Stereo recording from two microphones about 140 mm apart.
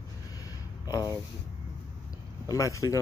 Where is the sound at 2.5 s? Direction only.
20° left (ahead or behind).